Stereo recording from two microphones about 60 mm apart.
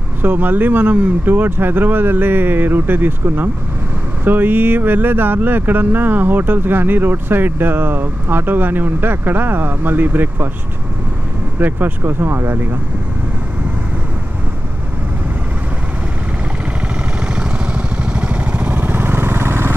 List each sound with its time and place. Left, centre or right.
0.2 s speech: right
11.6 s speech: right
17.4 s vehicle: centre; by 19.7 s right